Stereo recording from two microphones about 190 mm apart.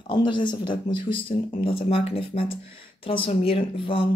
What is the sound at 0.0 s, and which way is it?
Speech, 25° left (ahead or behind).